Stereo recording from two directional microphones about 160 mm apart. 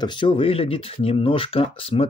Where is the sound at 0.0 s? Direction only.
30° left (ahead or behind).